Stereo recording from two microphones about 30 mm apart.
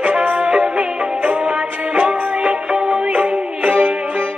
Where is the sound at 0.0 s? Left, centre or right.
Right.